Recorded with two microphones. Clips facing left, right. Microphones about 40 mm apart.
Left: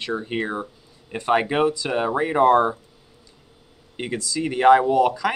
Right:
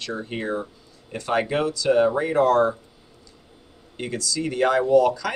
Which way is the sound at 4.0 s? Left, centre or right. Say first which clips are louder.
Left 1 dB; left.